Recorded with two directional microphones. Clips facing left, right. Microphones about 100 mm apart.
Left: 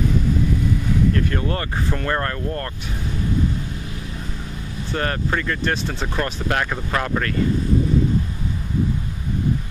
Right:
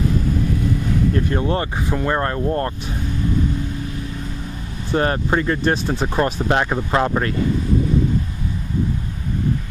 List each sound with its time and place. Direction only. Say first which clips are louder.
1.1 s speech: right 3 dB; 25° right (ahead or behind)
4.9 s speech: right 5 dB; 25° right (ahead or behind)